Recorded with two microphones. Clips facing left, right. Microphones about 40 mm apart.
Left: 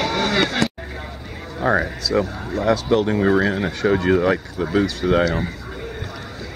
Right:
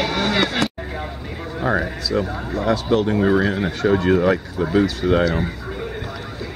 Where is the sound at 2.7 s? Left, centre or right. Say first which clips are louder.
Left 1 dB; centre.